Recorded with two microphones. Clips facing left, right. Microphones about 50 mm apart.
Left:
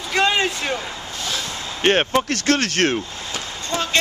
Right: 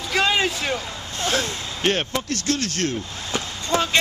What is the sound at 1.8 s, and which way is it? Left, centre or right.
Speech, left.